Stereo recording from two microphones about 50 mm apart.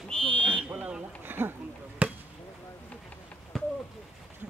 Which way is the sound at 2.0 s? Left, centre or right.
Right.